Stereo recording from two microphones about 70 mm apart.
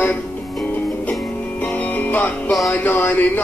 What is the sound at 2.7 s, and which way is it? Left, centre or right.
Speech, left.